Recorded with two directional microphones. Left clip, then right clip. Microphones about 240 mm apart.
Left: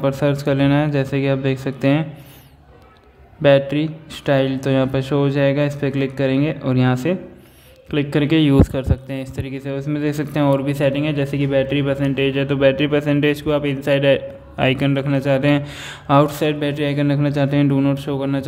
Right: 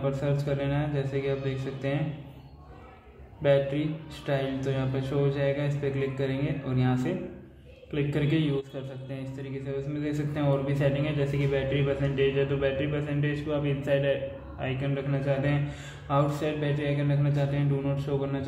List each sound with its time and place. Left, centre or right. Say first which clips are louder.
0.0 s a man's voice: left 11 dB; left
3.4 s a man's voice: left 10 dB; left